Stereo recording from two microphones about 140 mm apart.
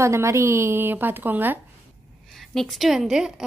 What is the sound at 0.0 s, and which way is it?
A woman's voice, 20° right (ahead or behind).